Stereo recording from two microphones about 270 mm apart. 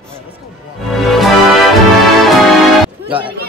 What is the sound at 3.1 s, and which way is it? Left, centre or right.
Speech, centre.